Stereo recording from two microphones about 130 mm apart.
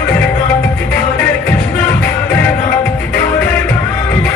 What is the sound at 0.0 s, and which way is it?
Music, 10° left (ahead or behind).